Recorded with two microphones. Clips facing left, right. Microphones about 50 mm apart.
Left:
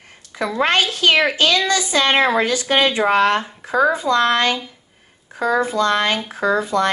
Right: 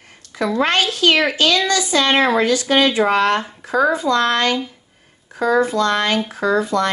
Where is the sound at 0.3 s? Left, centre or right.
Left.